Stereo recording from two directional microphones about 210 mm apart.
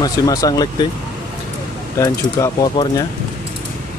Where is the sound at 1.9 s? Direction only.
15° left (ahead or behind).